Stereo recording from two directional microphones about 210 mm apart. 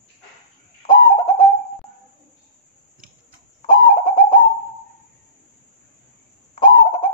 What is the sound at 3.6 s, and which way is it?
Bird, 20° left (ahead or behind).